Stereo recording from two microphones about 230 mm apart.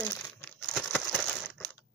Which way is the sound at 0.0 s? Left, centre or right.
Centre.